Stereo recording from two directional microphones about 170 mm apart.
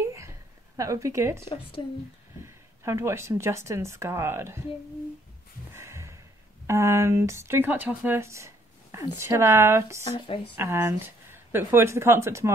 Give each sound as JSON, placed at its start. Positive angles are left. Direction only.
{"t": 0.1, "sound": "a sound", "side_deg": -15}
{"t": 1.8, "sound": "speech", "side_deg": 30}
{"t": 2.4, "sound": "speech", "side_deg": -15}
{"t": 5.7, "sound": "a sound", "side_deg": -15}
{"t": 6.7, "sound": "speech", "side_deg": -15}
{"t": 10.0, "sound": "speech", "side_deg": 30}
{"t": 10.6, "sound": "speech", "side_deg": -15}